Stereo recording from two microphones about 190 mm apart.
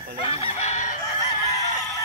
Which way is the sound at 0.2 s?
35° left (ahead or behind).